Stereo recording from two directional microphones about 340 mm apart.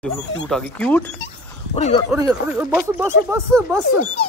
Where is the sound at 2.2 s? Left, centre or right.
Centre.